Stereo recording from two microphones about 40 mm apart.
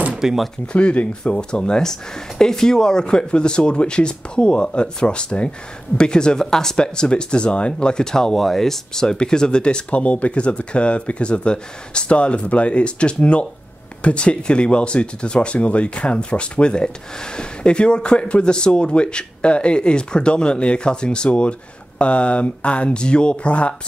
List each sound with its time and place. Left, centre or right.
0.2 s speech: centre
0.7 s speech: left
9.8 s speech: left